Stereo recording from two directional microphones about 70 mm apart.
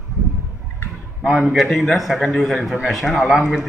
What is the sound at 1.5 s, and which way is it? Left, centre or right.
A man's voice, centre.